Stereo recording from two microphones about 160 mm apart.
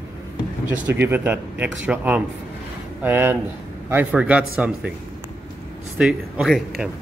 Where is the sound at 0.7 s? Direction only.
10° right (ahead or behind).